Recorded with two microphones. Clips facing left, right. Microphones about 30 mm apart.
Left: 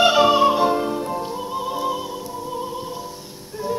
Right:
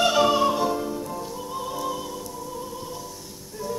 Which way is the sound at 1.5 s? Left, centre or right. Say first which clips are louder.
Left 5 dB; left.